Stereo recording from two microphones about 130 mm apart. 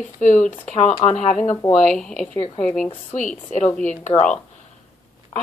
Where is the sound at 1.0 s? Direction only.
40° left (ahead or behind).